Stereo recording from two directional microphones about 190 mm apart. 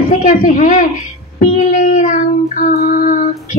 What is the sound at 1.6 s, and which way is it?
Child singing, 40° left (ahead or behind).